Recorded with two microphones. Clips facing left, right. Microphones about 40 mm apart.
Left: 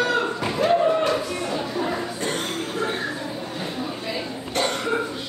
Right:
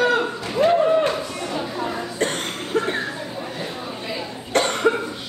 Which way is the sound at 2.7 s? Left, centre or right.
Right.